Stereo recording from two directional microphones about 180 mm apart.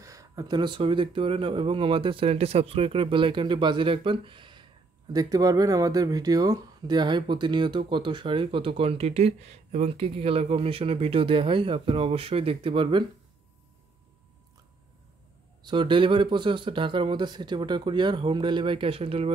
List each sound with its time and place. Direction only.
0.0 s speech: 20° right (ahead or behind)
15.6 s speech: 25° right (ahead or behind)